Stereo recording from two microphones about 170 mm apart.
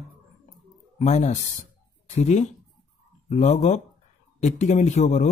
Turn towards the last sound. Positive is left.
turn(degrees=45)  # may be behind; listen again after turning